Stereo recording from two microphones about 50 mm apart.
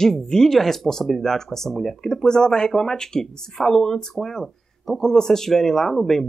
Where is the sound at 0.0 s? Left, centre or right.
Centre.